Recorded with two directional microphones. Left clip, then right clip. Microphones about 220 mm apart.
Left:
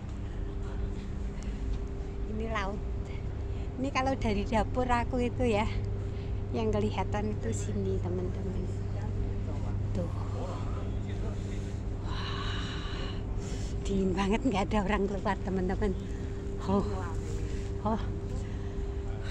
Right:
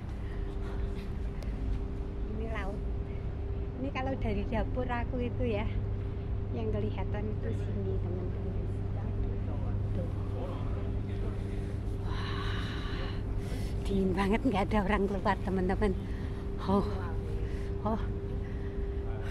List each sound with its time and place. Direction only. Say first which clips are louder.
3.8 s a woman's voice: left 5 dB; 25° left (ahead or behind)
12.3 s snort: left 1 dB; 5° left (ahead or behind)
13.8 s speech: even; centre (ahead or behind)